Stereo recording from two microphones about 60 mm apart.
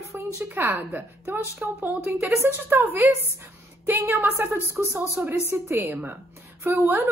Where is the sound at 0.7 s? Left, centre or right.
Right.